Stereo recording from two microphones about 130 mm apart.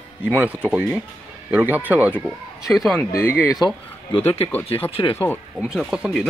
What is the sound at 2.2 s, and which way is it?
Speech, centre (ahead or behind).